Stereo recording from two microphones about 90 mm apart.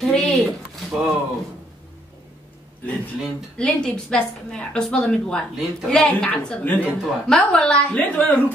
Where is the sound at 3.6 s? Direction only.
10° left (ahead or behind).